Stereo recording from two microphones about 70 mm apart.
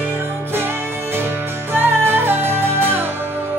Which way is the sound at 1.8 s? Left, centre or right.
Right.